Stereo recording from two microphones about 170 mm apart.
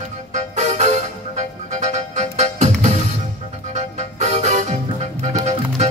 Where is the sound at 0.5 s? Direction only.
40° right (ahead or behind).